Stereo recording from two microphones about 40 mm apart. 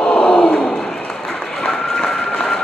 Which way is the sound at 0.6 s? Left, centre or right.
Centre.